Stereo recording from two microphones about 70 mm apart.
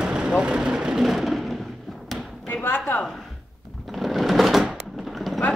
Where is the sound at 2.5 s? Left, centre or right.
Left.